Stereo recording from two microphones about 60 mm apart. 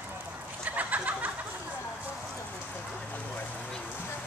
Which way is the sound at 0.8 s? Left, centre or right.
Right.